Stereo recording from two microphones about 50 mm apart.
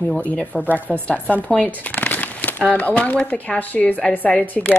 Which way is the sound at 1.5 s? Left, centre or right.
Left.